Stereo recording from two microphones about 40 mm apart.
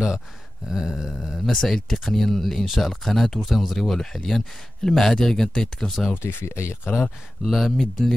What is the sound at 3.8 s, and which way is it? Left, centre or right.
Speech, centre.